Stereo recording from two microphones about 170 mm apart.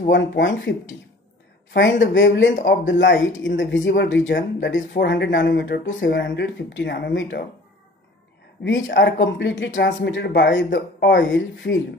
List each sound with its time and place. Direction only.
0.1 s speech: 90° left
8.6 s speech: 90° left